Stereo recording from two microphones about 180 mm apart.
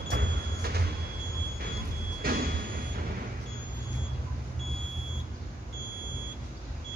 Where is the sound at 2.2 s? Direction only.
55° right (ahead or behind).